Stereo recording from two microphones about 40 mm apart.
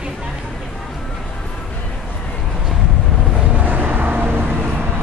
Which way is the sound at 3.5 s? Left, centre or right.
Right.